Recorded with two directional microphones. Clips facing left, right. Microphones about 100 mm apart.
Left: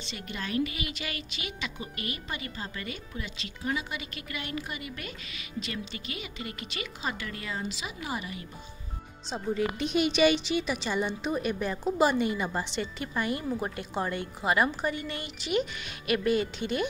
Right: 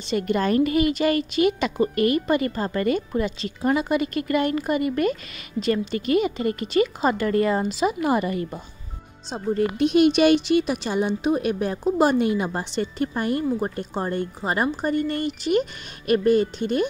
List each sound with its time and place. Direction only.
0.0 s a woman's voice: 50° right (ahead or behind)
13.6 s a woman's voice: 40° right (ahead or behind)